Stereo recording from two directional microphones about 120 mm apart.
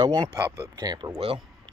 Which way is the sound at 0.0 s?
30° right (ahead or behind).